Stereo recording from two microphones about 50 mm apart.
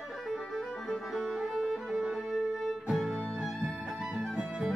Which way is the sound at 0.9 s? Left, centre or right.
Centre.